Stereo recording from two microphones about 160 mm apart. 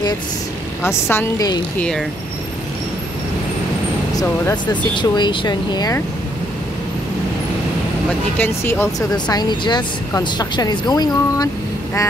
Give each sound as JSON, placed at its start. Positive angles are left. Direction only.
{"t": 0.8, "sound": "a woman's voice", "side_deg": 15}
{"t": 1.8, "sound": "speech", "side_deg": 5}
{"t": 4.2, "sound": "speech", "side_deg": 25}
{"t": 8.4, "sound": "a woman's voice", "side_deg": 15}
{"t": 9.1, "sound": "speech", "side_deg": 25}